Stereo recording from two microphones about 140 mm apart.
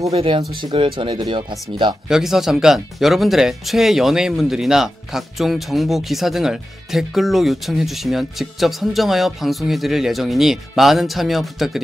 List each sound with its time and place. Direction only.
0.1 s speech: 40° right (ahead or behind)
2.0 s speech: 5° right (ahead or behind)